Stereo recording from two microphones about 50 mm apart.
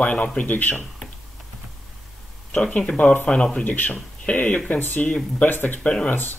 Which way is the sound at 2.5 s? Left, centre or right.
Centre.